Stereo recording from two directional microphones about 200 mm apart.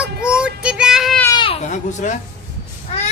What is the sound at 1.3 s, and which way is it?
Speech, 25° left (ahead or behind).